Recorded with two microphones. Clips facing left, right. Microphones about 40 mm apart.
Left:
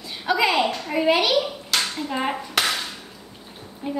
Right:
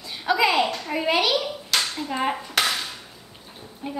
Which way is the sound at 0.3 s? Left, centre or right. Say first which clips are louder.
Even; centre.